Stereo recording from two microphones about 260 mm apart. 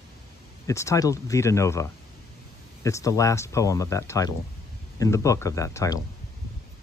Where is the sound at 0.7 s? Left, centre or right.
Centre.